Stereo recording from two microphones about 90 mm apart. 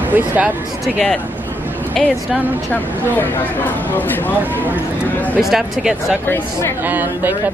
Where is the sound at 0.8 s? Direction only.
5° left (ahead or behind).